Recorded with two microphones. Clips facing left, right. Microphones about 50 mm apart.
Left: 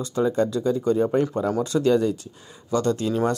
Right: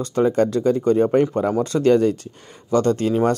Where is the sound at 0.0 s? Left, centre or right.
Right.